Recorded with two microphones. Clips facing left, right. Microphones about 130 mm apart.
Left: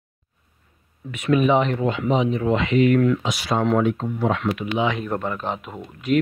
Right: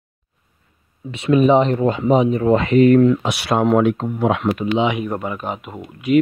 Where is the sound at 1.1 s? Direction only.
30° right (ahead or behind).